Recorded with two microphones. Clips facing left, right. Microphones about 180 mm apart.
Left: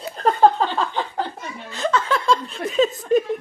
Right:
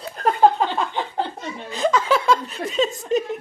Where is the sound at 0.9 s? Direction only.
20° right (ahead or behind).